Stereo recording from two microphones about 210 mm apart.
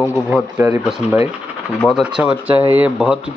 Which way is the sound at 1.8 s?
10° left (ahead or behind).